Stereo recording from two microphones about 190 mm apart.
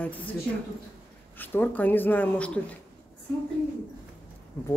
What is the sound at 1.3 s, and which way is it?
Speech, 10° left (ahead or behind).